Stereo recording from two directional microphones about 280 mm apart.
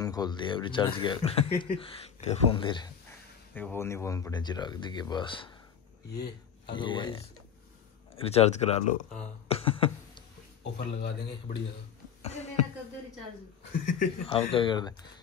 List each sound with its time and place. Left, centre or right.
0.0 s speech: centre
6.1 s speech: left
6.7 s speech: centre
8.2 s speech: left
9.5 s a sound: centre
10.6 s speech: left
12.2 s a sound: left
13.7 s speech: left